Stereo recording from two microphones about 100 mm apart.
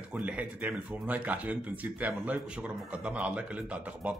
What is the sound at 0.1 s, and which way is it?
Speech, 10° right (ahead or behind).